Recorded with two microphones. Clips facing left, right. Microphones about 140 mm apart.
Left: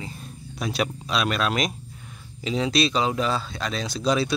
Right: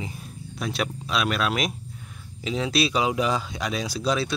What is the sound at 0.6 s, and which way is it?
Speech, centre (ahead or behind).